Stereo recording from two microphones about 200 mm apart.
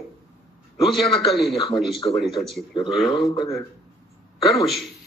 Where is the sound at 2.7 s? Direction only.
25° left (ahead or behind).